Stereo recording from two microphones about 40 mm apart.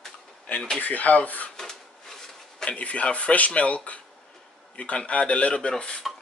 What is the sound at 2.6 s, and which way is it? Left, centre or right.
Speech, left.